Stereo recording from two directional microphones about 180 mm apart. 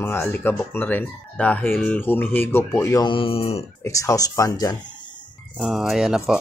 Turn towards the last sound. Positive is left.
turn(degrees=-5)  # may be behind; listen again after turning